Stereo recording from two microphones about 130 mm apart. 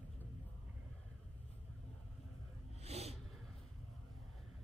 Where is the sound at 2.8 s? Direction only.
55° right (ahead or behind).